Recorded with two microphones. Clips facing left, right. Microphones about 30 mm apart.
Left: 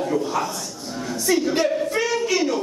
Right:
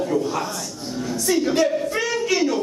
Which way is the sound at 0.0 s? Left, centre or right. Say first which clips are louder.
Even; centre.